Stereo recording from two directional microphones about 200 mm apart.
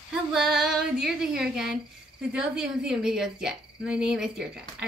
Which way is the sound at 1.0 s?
Centre (ahead or behind).